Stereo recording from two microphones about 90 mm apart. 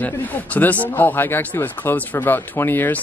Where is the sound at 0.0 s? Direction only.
15° left (ahead or behind).